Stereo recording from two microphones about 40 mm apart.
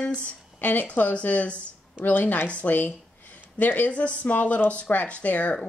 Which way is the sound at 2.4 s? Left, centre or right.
Left.